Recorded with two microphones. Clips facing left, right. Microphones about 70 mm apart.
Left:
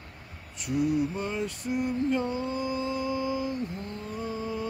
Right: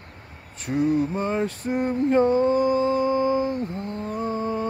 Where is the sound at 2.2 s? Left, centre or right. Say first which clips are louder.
Right 11 dB; right.